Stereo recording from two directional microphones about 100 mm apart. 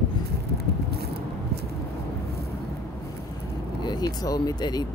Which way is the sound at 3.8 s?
45° left (ahead or behind).